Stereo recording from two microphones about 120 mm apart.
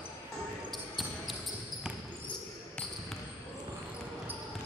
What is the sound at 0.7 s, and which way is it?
Basketball bounce, centre (ahead or behind).